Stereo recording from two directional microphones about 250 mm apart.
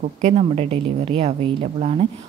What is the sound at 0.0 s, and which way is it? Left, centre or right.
A woman's voice, right.